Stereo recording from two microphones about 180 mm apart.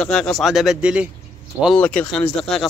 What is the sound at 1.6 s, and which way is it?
Speech, 5° left (ahead or behind).